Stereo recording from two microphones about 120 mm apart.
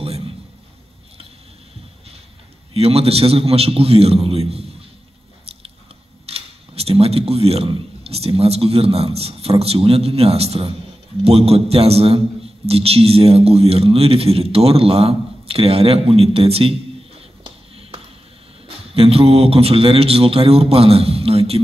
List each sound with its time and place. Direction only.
2.7 s a man's voice: 55° right (ahead or behind)
6.2 s a man's voice: 55° right (ahead or behind)
18.9 s a man's voice: 55° right (ahead or behind)